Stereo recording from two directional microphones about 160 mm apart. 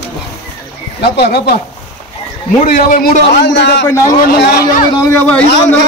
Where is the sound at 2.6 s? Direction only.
60° left (ahead or behind); by 3.8 s 90° left.